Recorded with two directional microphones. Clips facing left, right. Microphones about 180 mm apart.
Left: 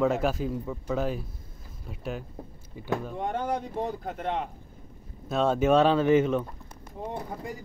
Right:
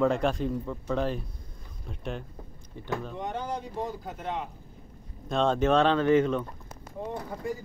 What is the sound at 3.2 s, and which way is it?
Speech, 50° left (ahead or behind).